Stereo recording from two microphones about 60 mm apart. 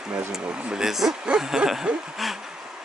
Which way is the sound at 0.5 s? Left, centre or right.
Centre.